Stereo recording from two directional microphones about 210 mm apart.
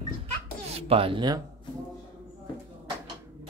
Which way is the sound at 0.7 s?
25° right (ahead or behind).